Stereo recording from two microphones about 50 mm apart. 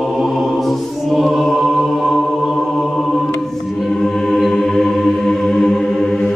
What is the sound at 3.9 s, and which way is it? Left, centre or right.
Music, centre.